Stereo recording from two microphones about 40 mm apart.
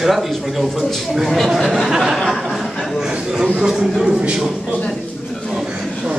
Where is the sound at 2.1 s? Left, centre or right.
Centre.